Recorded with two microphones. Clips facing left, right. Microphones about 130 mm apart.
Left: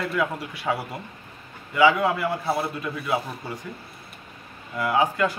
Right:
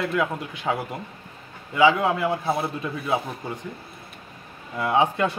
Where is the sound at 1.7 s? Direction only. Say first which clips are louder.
Even; 20° right (ahead or behind).